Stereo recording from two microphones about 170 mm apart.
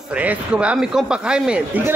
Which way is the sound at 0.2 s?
10° right (ahead or behind).